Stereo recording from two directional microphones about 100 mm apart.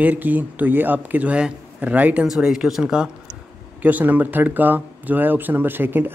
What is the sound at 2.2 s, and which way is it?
Speech, 5° right (ahead or behind).